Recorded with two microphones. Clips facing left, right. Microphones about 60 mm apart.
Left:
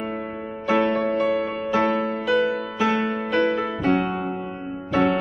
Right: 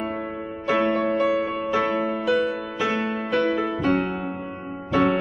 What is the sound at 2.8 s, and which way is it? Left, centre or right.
Music, left.